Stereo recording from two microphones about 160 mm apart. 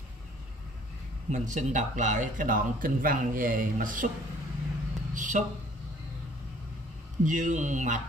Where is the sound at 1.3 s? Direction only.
50° right (ahead or behind).